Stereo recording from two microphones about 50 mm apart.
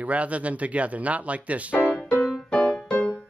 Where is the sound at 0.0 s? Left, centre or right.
Right.